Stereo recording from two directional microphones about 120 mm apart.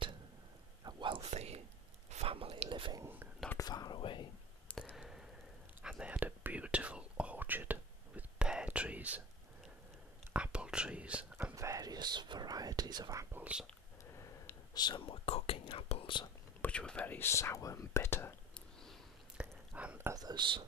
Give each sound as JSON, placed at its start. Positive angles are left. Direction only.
{"t": 0.8, "sound": "whispering", "side_deg": -40}
{"t": 1.2, "sound": "whispering", "side_deg": -65}
{"t": 3.5, "sound": "whispering", "side_deg": 35}
{"t": 4.9, "sound": "squish", "side_deg": -5}
{"t": 5.8, "sound": "whispering", "side_deg": -10}
{"t": 10.3, "sound": "whispering", "side_deg": -10}
{"t": 11.3, "sound": "whispering", "side_deg": -20}
{"t": 13.4, "sound": "whispering", "side_deg": -10}
{"t": 14.1, "sound": "a sound", "side_deg": 25}
{"t": 14.8, "sound": "whispering", "side_deg": 40}
{"t": 15.9, "sound": "whispering", "side_deg": 45}
{"t": 16.6, "sound": "whispering", "side_deg": 10}
{"t": 19.3, "sound": "a sound", "side_deg": -10}
{"t": 20.1, "sound": "whispering", "side_deg": -35}